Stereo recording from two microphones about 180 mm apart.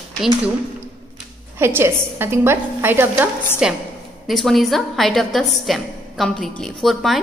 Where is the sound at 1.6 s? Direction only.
10° right (ahead or behind).